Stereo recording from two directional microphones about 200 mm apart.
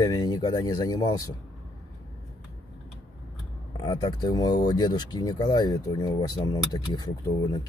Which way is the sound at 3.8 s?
20° left (ahead or behind).